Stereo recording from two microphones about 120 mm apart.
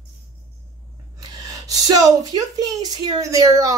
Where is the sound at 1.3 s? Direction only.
30° right (ahead or behind).